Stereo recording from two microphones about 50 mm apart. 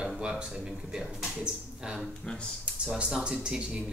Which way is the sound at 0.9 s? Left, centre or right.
Centre.